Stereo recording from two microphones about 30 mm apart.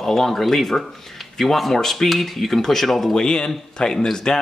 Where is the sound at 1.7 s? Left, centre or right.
Centre.